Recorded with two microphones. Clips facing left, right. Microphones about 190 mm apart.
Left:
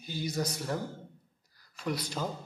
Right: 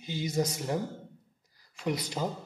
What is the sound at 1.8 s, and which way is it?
Speech, 15° right (ahead or behind).